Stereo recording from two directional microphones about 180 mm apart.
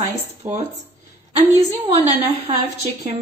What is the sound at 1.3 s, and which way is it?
A woman's voice, 35° right (ahead or behind).